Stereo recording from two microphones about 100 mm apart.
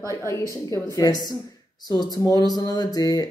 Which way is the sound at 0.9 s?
40° left (ahead or behind).